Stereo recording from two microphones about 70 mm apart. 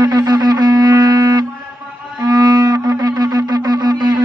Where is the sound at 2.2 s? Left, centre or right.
Right.